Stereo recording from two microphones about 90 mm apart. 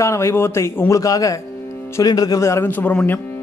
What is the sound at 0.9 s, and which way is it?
Speech, 40° left (ahead or behind).